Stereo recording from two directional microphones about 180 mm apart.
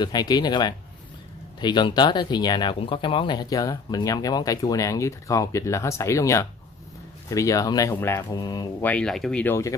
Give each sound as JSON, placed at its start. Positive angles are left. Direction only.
{"t": 0.0, "sound": "speech", "side_deg": 20}
{"t": 8.8, "sound": "speech", "side_deg": 5}